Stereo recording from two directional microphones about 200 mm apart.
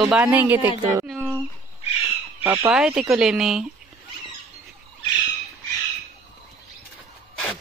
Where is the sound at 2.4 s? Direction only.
10° right (ahead or behind).